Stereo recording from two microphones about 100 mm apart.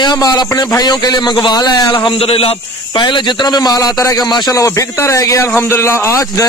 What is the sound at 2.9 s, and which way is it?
A man's voice, 50° left (ahead or behind).